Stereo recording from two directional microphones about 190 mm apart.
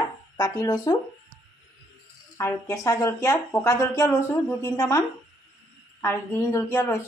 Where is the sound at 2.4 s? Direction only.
15° left (ahead or behind).